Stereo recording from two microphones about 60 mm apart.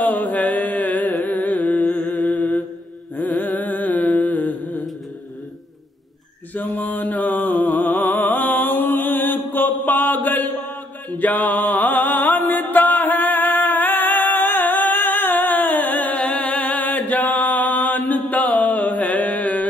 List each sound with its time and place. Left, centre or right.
0.0 s music: left
2.2 s mantra: centre
3.3 s carnatic music: left
6.5 s music: left